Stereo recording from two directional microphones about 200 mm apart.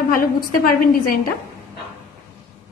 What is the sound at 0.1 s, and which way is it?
A woman's voice, 45° left (ahead or behind).